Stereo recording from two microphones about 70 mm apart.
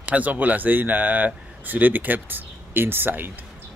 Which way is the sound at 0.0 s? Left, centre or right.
Right.